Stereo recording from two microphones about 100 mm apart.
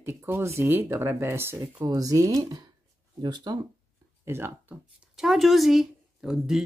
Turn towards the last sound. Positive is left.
turn(degrees=-5)  # may be behind; listen again after turning